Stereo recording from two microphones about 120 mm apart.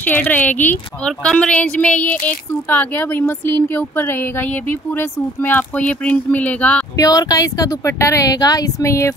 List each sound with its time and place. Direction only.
0.0 s a woman's voice: 15° left (ahead or behind)
7.0 s speech: 30° left (ahead or behind)